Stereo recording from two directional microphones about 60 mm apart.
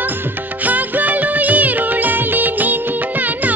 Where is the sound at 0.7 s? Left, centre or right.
Right.